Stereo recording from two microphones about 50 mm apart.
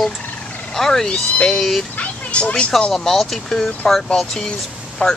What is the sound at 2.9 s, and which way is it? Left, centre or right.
Speech, centre.